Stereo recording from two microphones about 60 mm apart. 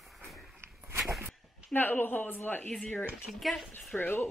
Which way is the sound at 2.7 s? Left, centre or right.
Centre.